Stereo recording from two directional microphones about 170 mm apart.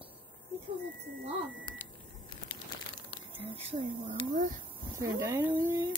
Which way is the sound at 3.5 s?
40° right (ahead or behind).